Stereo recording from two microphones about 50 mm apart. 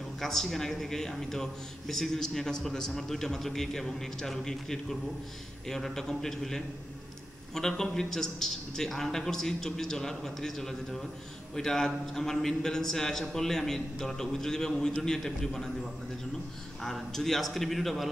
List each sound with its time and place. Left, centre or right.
0.2 s a man's voice: centre
14.9 s a man's voice: left; by 18.1 s centre